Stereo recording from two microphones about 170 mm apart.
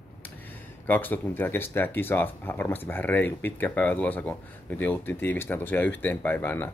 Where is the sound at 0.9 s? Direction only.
10° left (ahead or behind).